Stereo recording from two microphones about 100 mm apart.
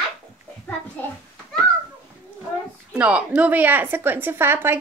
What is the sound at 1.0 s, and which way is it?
Speech, 15° left (ahead or behind).